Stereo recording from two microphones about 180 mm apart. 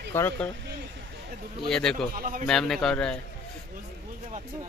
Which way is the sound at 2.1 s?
50° right (ahead or behind).